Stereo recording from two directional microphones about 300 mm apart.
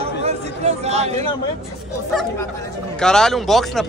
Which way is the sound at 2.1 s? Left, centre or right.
Centre.